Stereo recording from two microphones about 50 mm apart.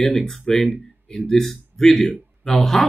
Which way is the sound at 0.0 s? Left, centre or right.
Centre.